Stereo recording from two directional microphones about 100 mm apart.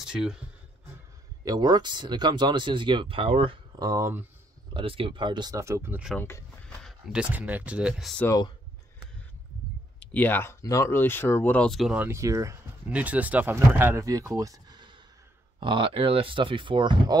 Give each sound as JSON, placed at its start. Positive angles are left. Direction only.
{"t": 0.0, "sound": "speech", "side_deg": -5}
{"t": 1.4, "sound": "speech", "side_deg": -40}
{"t": 3.7, "sound": "speech", "side_deg": -35}
{"t": 4.7, "sound": "speech", "side_deg": -65}
{"t": 5.6, "sound": "speech", "side_deg": -25}
{"t": 6.1, "sound": "speech", "side_deg": 25}
{"t": 7.1, "sound": "speech", "side_deg": -10}
{"t": 8.2, "sound": "speech", "side_deg": 20}
{"t": 9.9, "sound": "speech", "side_deg": 15}
{"t": 12.1, "sound": "speech", "side_deg": -30}
{"t": 12.8, "sound": "speech", "side_deg": -15}
{"t": 14.0, "sound": "speech", "side_deg": -35}
{"t": 15.6, "sound": "speech", "side_deg": -60}